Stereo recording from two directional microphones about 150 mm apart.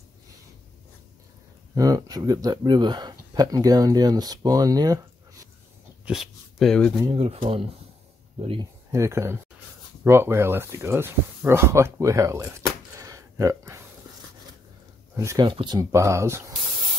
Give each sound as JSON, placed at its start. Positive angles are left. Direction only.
{"t": 1.8, "sound": "speech", "side_deg": -25}
{"t": 6.0, "sound": "speech", "side_deg": 0}
{"t": 7.1, "sound": "speech", "side_deg": -40}
{"t": 8.9, "sound": "speech", "side_deg": -20}
{"t": 15.1, "sound": "speech", "side_deg": -25}
{"t": 15.8, "sound": "speech", "side_deg": -20}